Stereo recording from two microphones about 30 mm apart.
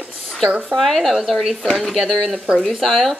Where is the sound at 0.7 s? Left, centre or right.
Centre.